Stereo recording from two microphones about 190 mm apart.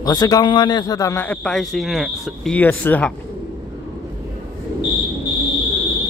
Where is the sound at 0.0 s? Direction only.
20° left (ahead or behind).